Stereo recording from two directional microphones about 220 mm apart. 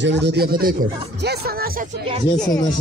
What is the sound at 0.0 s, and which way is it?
Speech, 50° right (ahead or behind).